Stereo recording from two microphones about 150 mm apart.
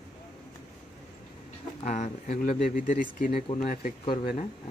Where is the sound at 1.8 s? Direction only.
55° left (ahead or behind).